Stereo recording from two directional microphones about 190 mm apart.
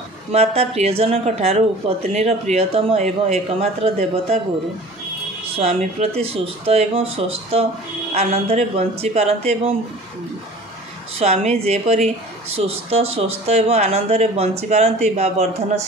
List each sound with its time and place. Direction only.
0.3 s speech: 35° right (ahead or behind)
5.6 s speech: 35° right (ahead or behind)
11.1 s speech: 35° right (ahead or behind)